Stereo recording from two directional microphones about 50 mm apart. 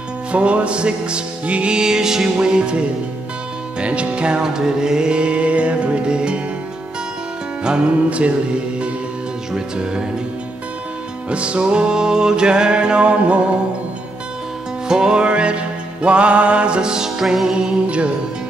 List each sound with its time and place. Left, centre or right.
0.3 s music: right
7.6 s music: right
9.5 s speech: centre
11.2 s music: right
14.9 s music: centre